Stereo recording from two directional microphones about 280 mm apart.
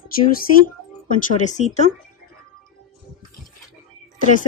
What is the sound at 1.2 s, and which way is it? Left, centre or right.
Speech, left.